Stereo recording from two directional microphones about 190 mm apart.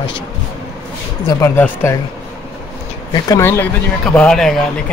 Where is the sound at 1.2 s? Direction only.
10° left (ahead or behind).